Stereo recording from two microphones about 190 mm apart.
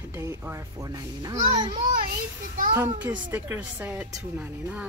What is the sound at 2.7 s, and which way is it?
A woman's voice, 10° right (ahead or behind).